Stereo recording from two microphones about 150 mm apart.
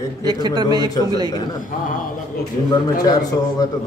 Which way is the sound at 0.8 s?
25° left (ahead or behind).